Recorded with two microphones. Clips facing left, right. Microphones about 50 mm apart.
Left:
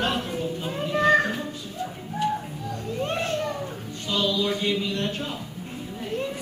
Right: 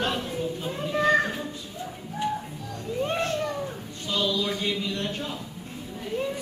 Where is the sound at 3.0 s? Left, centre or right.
Centre.